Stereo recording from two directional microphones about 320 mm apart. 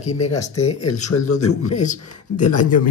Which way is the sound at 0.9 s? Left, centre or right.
Left.